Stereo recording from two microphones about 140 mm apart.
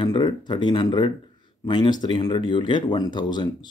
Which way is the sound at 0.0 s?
35° left (ahead or behind).